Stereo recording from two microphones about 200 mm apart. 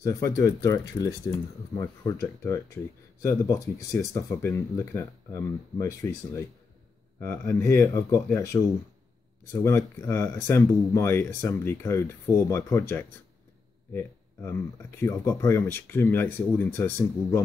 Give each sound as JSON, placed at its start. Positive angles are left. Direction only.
{"t": 0.0, "sound": "speech", "side_deg": 15}